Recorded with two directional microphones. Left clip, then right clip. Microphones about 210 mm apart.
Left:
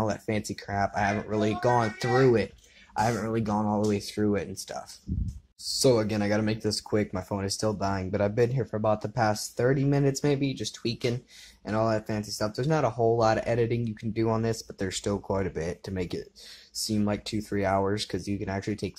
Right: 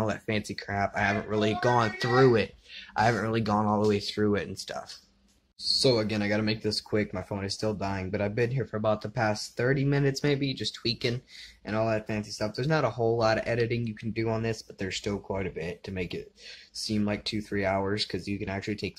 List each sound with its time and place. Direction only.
0.0 s speech: 10° right (ahead or behind)
5.6 s speech: 5° left (ahead or behind)